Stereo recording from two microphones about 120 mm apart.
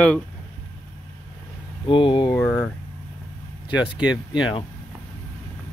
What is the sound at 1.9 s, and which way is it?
Speech, 45° left (ahead or behind).